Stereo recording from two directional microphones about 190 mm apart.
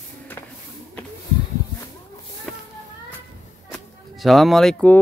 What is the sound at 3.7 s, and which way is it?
Music, centre (ahead or behind).